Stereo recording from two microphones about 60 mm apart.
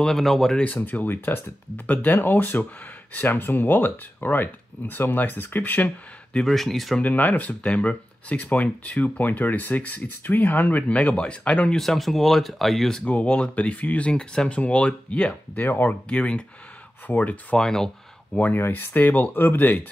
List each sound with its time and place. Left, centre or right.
0.0 s speech: centre
0.6 s speech: left
6.3 s speech: centre
7.0 s speech: left
8.6 s speech: centre
9.0 s speech: left
11.8 s speech: centre
13.0 s speech: left
15.6 s speech: left
16.1 s speech: centre
17.6 s speech: centre
18.4 s speech: left